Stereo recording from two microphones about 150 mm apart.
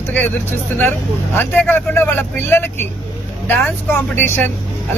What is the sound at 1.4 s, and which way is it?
Speech, 15° left (ahead or behind).